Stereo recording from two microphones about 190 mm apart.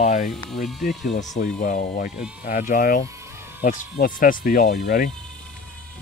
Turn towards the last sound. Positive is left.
turn(degrees=55)  # may be behind; listen again after turning